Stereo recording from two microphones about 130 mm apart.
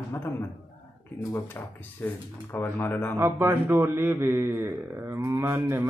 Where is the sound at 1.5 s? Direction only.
15° left (ahead or behind).